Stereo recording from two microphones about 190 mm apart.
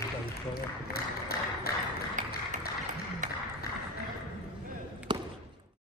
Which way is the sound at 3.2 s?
45° right (ahead or behind).